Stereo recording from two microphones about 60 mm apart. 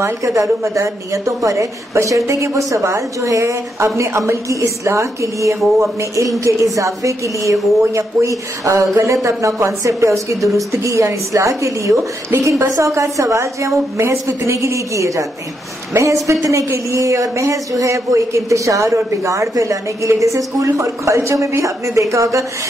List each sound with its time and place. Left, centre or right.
0.0 s a woman's voice: right
12.4 s a woman's voice: right